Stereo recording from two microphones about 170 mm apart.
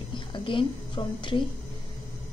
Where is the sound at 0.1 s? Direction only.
30° left (ahead or behind).